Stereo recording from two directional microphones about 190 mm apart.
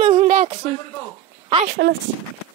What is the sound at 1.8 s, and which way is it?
Speech, 65° right (ahead or behind).